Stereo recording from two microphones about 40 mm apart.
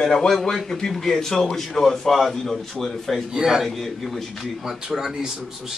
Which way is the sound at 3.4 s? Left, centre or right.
Centre.